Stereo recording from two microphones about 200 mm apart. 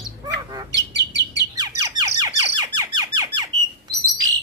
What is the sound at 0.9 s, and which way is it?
Bird, 60° right (ahead or behind).